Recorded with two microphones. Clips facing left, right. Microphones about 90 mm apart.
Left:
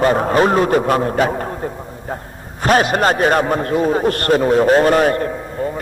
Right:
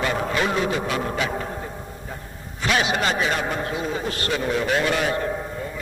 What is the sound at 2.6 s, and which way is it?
A man's voice, 45° left (ahead or behind).